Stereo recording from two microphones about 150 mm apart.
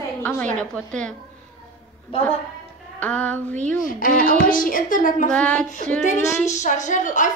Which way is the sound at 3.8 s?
65° left (ahead or behind).